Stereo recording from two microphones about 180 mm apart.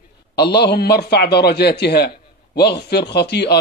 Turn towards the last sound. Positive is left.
turn(degrees=65)  # may be behind; listen again after turning